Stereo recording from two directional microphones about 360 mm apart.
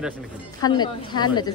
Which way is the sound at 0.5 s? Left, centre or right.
Centre.